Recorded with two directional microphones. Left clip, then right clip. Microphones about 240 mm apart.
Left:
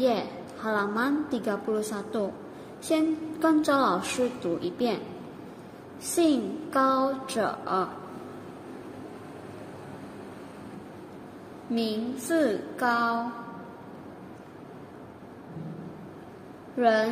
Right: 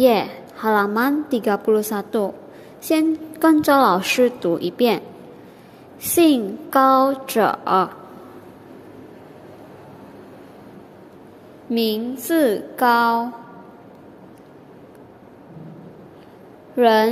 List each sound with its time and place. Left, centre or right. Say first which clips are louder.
0.0 s a woman's voice: right 10 dB; right
6.1 s a woman's voice: right 9 dB; right
11.7 s a woman's voice: right 8 dB; right
16.7 s a woman's voice: right 8 dB; right